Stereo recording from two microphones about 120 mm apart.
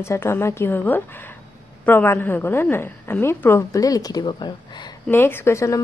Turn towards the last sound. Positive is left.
turn(degrees=25)  # may be behind; listen again after turning